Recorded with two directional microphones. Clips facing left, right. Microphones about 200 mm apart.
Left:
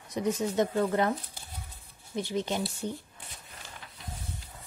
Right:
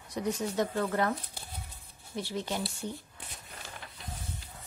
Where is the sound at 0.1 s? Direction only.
20° left (ahead or behind).